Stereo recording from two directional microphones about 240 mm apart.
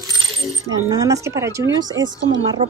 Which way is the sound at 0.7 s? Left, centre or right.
Centre.